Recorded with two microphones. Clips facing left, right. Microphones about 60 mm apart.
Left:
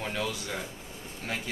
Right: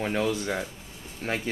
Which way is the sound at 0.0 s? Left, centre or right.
Right.